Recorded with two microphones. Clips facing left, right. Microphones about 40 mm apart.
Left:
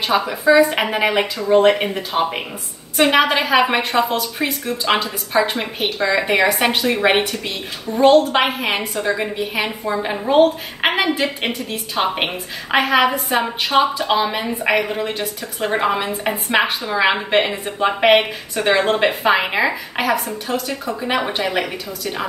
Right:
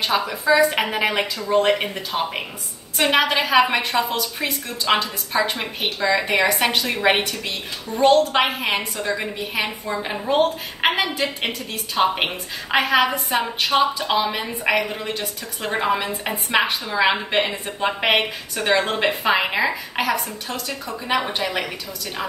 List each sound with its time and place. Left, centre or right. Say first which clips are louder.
0.0 s a woman's voice: left 4 dB; centre